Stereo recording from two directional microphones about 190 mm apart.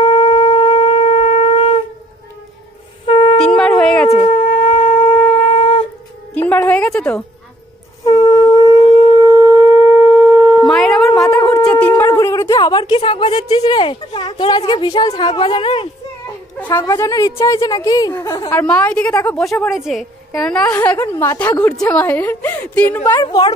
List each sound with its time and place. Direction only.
0.0 s shofar: 30° left (ahead or behind)
3.1 s a sound: 25° left (ahead or behind)
3.3 s a sound: 5° left (ahead or behind)
4.2 s wind instrument: 30° left (ahead or behind)
6.3 s music: 10° left (ahead or behind)
8.0 s wind instrument: 20° left (ahead or behind)
8.8 s shofar: 25° left (ahead or behind)
9.2 s singing bowl: 15° right (ahead or behind)
10.7 s a sound: centre (ahead or behind); by 15.9 s 30° left (ahead or behind)
16.7 s a woman's voice: 15° left (ahead or behind)
19.5 s a woman's voice: centre (ahead or behind)
23.2 s a woman's voice: 25° left (ahead or behind)